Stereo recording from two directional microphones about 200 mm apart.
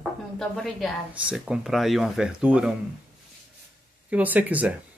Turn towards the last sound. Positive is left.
turn(degrees=-10)  # may be behind; listen again after turning